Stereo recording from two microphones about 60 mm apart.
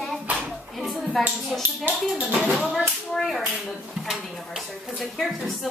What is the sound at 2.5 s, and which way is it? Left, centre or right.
Speech, centre.